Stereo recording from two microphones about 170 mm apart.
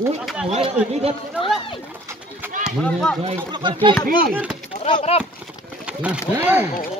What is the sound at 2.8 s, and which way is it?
Speech, 5° left (ahead or behind).